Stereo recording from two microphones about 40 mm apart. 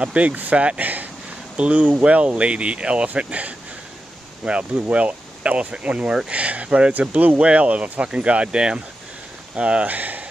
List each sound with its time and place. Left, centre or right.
0.0 s speech: right
9.8 s speech: right